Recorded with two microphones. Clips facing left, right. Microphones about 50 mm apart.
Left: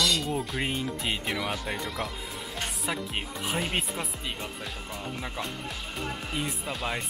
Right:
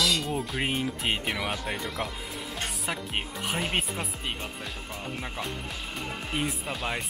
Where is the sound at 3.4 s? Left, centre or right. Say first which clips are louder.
Even; centre.